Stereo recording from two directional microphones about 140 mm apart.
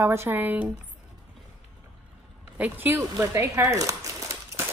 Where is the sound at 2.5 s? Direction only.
10° right (ahead or behind).